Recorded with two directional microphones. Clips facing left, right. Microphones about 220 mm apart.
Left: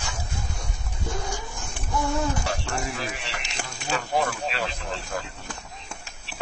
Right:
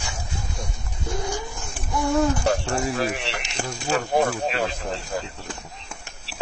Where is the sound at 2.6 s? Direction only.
30° right (ahead or behind).